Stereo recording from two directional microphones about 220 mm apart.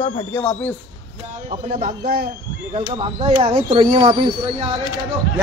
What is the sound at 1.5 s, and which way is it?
Speech, 35° right (ahead or behind).